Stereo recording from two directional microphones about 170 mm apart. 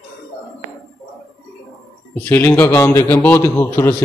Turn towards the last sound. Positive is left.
turn(degrees=15)  # may be behind; listen again after turning